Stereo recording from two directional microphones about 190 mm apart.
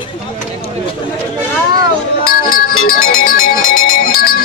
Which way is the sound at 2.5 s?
50° left (ahead or behind).